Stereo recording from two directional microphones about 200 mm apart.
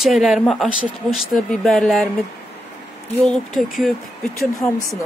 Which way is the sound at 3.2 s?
Centre (ahead or behind).